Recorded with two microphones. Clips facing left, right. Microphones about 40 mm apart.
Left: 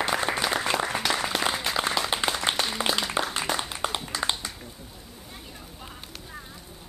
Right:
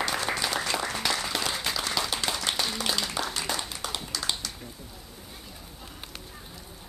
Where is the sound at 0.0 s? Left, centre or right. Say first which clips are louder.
Left 3 dB; left.